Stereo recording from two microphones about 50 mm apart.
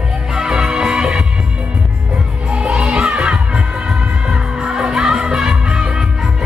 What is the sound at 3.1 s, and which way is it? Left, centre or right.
Crowd, centre.